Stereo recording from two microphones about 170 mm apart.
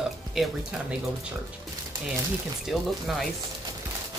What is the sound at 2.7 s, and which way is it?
Speech, centre (ahead or behind).